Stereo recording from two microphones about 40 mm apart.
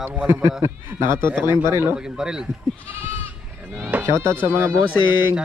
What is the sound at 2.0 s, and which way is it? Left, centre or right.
Speech, centre.